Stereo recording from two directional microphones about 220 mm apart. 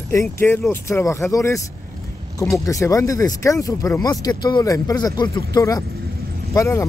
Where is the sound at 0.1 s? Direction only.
10° left (ahead or behind).